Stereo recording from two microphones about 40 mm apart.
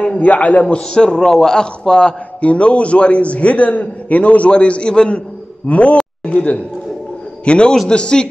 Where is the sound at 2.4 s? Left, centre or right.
Left.